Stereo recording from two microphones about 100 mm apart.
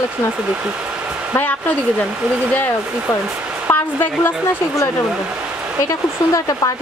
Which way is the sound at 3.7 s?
20° left (ahead or behind).